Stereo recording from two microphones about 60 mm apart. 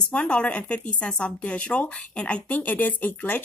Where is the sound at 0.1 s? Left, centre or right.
Centre.